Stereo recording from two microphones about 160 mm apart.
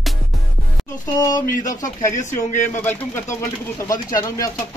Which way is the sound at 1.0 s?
20° left (ahead or behind).